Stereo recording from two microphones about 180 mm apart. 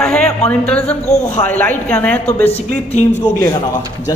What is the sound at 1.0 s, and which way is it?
Speech, 40° left (ahead or behind).